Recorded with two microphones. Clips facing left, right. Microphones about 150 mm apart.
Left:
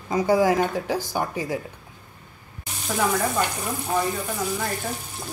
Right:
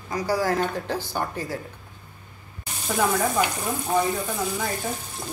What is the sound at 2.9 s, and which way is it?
Speech, centre (ahead or behind).